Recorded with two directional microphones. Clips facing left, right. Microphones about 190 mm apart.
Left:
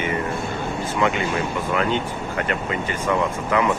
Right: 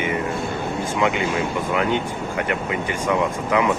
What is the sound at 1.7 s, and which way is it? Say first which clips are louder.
Speech: even; 15° right (ahead or behind).